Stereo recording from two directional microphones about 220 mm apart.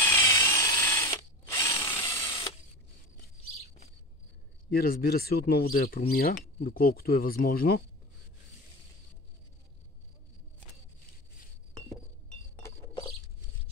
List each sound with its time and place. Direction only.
0.0 s ratchet: 15° left (ahead or behind)
4.6 s speech: 45° left (ahead or behind)